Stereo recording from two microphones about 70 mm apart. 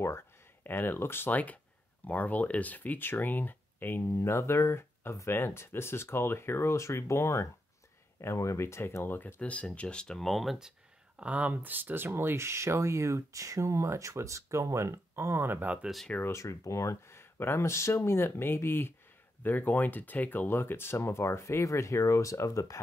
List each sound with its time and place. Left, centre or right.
0.7 s speech: left
4.1 s speech: left
9.4 s speech: centre
11.1 s speech: centre
16.3 s speech: left